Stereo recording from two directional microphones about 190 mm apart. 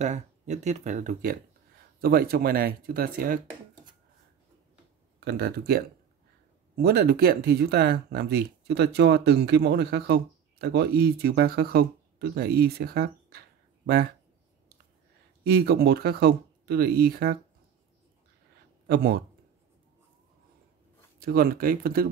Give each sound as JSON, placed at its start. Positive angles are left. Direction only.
{"t": 0.0, "sound": "speech", "side_deg": -40}
{"t": 2.0, "sound": "speech", "side_deg": -55}
{"t": 5.2, "sound": "speech", "side_deg": -50}
{"t": 15.4, "sound": "speech", "side_deg": -55}
{"t": 21.2, "sound": "speech", "side_deg": -50}